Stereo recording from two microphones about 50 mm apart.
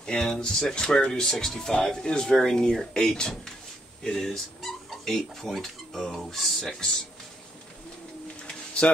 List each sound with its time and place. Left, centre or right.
0.0 s speech: centre
6.6 s speech: centre
8.5 s a sound: centre